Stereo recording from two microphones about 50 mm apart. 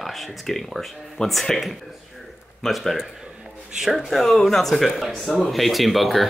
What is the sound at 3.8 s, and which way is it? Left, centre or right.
Speech, centre.